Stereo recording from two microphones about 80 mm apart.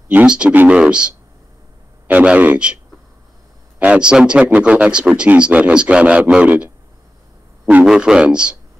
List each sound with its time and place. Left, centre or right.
0.1 s a man's voice: centre
3.8 s a man's voice: centre
7.8 s a man's voice: centre